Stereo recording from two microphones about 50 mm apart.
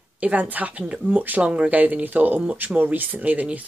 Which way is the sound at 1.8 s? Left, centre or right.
Right.